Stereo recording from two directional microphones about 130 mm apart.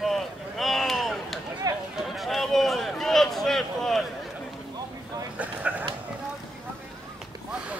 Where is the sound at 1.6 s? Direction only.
30° right (ahead or behind).